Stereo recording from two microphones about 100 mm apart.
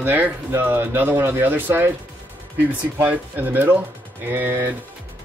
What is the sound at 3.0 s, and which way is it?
Speech, 15° right (ahead or behind).